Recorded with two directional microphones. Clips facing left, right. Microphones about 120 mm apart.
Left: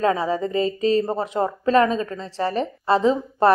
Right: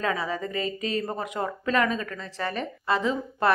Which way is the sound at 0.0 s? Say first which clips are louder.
Left 7 dB; 35° left (ahead or behind).